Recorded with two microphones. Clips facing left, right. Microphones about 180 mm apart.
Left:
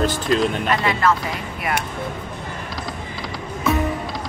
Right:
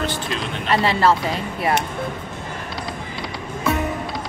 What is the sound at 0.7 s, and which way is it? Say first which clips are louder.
Speech: right 2 dB; 30° right (ahead or behind).